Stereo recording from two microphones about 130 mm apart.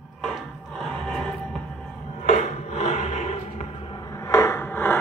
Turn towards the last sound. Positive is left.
turn(degrees=15)  # may be behind; listen again after turning